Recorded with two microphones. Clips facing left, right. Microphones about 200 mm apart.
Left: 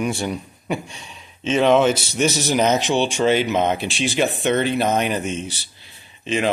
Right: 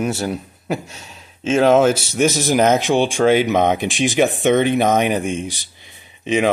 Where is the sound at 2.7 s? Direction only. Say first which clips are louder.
Right 3 dB; 50° right (ahead or behind).